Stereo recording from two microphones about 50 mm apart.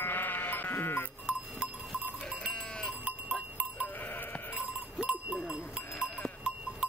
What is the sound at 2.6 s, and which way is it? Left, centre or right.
Livestock, centre.